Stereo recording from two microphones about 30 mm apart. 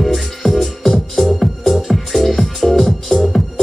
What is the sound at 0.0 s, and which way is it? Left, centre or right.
Music, centre.